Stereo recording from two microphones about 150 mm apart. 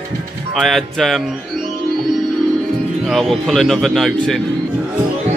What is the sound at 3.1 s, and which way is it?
Speech, centre (ahead or behind).